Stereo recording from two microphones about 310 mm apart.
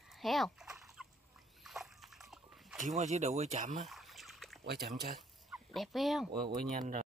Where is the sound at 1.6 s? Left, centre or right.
Centre.